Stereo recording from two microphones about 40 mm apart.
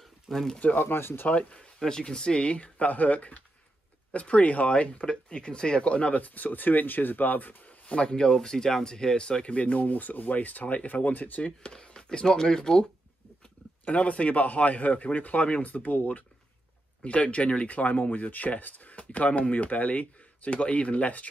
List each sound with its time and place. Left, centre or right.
0.0 s a sound: centre
0.7 s speech: left
1.8 s speech: centre; by 5.0 s left
5.0 s speech: left
6.2 s speech: left
7.8 s speech: left
11.4 s speech: left
13.8 s speech: left
17.0 s speech: left
17.7 s speech: left